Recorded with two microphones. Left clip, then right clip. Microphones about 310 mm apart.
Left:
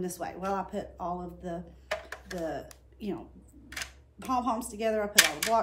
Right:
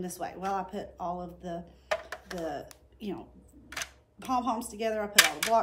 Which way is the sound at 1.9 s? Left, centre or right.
Centre.